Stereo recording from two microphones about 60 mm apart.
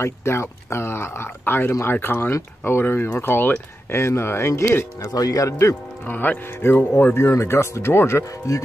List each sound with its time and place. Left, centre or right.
0.0 s speech: left
5.0 s speech: left
6.0 s speech: left